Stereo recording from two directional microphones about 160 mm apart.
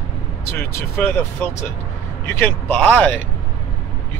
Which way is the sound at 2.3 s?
10° left (ahead or behind).